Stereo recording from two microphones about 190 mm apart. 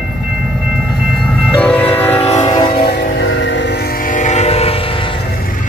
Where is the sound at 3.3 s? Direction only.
70° left (ahead or behind).